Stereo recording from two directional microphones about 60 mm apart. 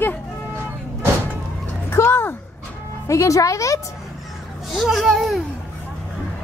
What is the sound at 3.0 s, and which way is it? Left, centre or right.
Speech, left.